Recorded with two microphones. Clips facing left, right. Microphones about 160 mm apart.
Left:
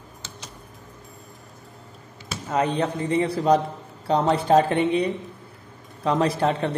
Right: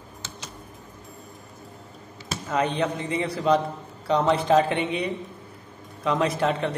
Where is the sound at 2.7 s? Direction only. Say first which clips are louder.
Left 3 dB; 40° left (ahead or behind).